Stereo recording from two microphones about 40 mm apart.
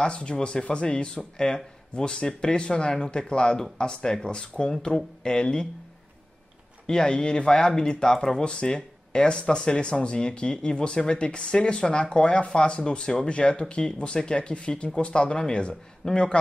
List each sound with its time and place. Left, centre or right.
0.0 s speech: left
6.9 s speech: centre